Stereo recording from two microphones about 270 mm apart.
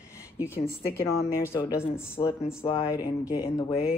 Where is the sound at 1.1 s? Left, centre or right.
Centre.